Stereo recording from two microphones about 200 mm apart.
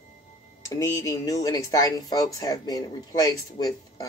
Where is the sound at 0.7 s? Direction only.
20° left (ahead or behind).